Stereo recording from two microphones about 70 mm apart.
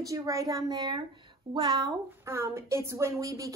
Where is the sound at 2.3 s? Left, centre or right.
Right.